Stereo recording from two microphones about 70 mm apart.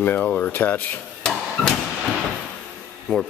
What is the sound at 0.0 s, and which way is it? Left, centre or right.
Speech, left.